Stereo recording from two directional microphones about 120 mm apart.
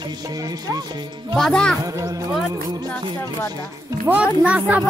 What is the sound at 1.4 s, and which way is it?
Speech, 5° left (ahead or behind).